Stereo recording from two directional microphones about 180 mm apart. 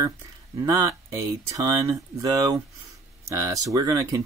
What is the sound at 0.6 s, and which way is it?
Speech, 20° right (ahead or behind).